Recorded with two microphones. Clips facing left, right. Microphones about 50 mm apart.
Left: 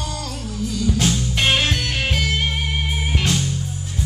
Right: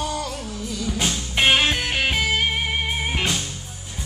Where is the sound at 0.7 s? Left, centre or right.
Centre.